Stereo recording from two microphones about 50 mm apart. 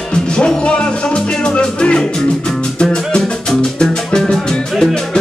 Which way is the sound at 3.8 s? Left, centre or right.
Centre.